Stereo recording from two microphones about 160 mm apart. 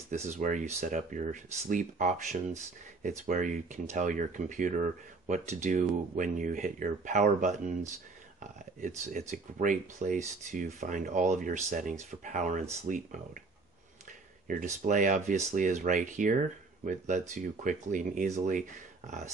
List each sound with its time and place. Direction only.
0.1 s speech: 45° right (ahead or behind)
14.5 s speech: 50° right (ahead or behind)